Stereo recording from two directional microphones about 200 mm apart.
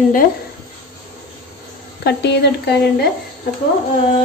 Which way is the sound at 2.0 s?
55° left (ahead or behind).